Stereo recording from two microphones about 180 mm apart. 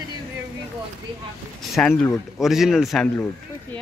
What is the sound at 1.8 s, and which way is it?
Speech, 5° left (ahead or behind).